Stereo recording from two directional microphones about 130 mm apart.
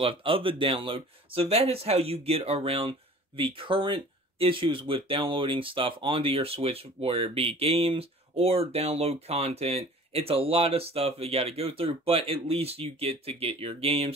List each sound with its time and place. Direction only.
0.0 s speech: 45° right (ahead or behind)